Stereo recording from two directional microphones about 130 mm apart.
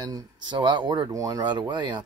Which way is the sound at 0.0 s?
35° right (ahead or behind).